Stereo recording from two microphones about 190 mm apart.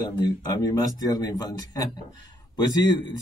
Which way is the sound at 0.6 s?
20° left (ahead or behind).